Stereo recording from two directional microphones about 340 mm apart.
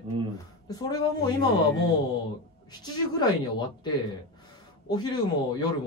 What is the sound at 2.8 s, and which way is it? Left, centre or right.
Speech, centre.